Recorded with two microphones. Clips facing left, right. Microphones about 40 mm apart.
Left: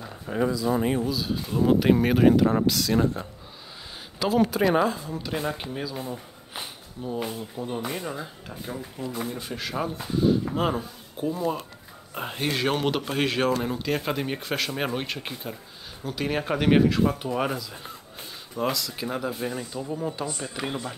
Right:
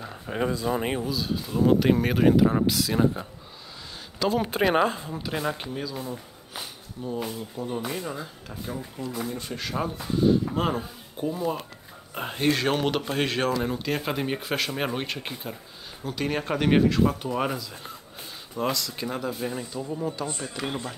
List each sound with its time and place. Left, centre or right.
0.4 s speech: right
0.7 s speech: right
1.0 s speech: centre
4.5 s speech: right
5.1 s speech: centre